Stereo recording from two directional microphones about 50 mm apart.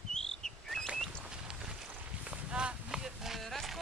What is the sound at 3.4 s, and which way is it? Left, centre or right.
Music, centre.